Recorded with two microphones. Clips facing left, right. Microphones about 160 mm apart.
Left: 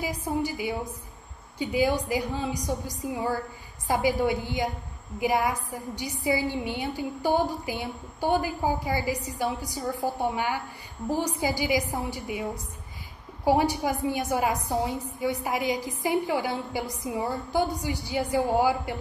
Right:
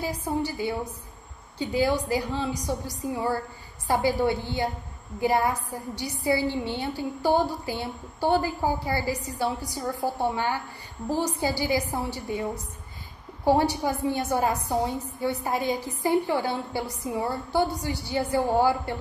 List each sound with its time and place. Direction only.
0.0 s a woman's voice: 15° left (ahead or behind)
13.5 s a woman's voice: 15° left (ahead or behind)